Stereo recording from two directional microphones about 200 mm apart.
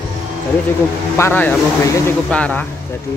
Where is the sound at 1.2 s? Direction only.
10° left (ahead or behind).